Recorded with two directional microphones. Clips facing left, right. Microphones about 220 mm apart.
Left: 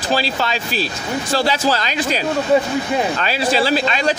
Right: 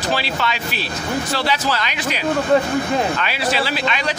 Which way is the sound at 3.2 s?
40° left (ahead or behind).